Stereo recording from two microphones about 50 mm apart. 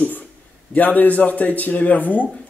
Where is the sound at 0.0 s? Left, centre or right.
Left.